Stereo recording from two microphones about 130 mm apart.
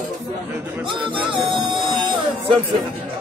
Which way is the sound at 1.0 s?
40° right (ahead or behind).